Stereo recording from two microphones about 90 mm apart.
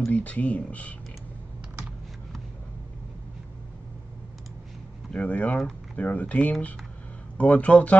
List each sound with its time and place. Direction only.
0.1 s speech: 15° left (ahead or behind)
5.1 s speech: 15° left (ahead or behind)